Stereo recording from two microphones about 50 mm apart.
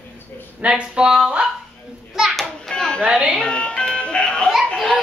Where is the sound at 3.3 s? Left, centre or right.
Centre.